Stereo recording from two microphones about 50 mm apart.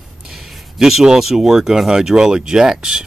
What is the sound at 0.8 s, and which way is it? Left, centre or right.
Speech, centre.